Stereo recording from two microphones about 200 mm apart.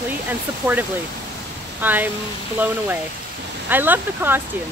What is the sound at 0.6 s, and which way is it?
Speech, 15° right (ahead or behind).